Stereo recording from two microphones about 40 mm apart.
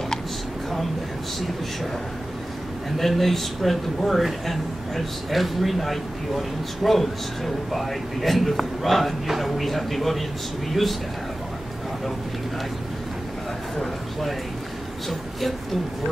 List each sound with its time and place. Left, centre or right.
3.0 s speech: centre